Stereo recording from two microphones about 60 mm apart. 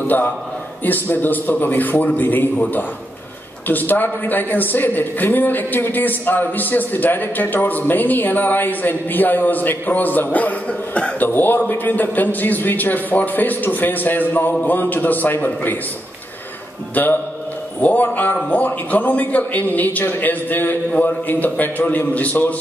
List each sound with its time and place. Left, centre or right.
0.0 s a man's voice: left
3.6 s a man's voice: left
11.2 s a man's voice: left
16.9 s a man's voice: left